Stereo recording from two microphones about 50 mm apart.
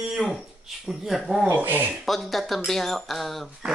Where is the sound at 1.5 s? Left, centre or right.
Right.